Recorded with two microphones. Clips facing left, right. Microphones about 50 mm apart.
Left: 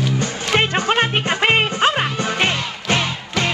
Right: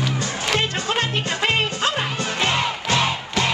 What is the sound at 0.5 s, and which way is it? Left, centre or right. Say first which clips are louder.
Music: left 6 dB; left.